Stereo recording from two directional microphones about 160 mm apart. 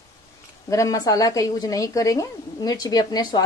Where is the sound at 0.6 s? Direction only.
20° left (ahead or behind).